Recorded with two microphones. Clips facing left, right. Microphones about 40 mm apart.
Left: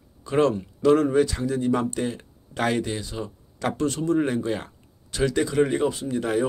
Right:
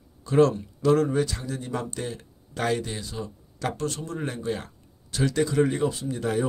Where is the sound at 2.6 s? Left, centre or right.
Left.